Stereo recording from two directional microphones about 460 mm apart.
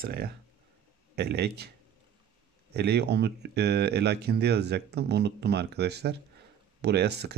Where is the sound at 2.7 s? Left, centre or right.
Right.